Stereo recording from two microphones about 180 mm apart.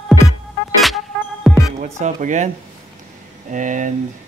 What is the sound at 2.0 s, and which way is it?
Speech, 40° right (ahead or behind).